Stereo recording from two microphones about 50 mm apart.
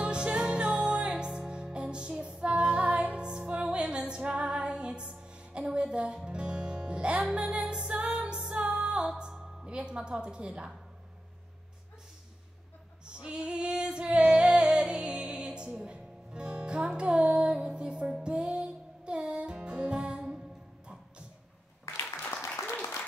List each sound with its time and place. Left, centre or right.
0.0 s music: right
9.8 s a sound: centre
13.0 s female singing: centre
18.2 s music: right
21.9 s applause: left
22.7 s applause: left